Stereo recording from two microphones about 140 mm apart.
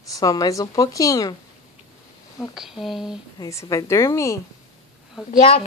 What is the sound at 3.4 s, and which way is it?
A woman's voice, 20° left (ahead or behind).